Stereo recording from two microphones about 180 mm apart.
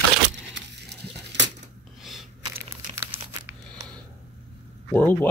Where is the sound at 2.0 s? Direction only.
Centre (ahead or behind).